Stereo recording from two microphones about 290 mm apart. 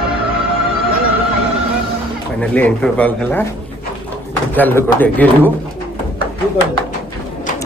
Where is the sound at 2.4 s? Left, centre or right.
Centre.